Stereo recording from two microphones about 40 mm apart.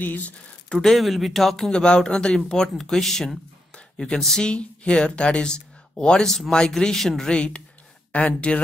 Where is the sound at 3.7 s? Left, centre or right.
Left.